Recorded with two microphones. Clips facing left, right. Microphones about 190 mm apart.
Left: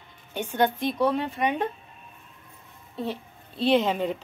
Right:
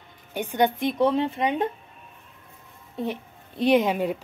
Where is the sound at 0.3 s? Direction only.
10° right (ahead or behind).